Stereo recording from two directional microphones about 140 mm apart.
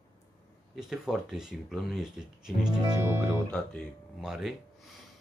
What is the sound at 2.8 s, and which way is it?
Speech, 30° right (ahead or behind).